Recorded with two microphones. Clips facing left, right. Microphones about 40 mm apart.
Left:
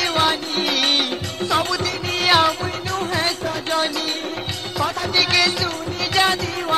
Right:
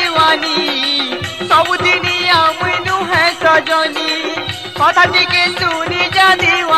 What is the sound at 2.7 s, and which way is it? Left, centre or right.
Music, right.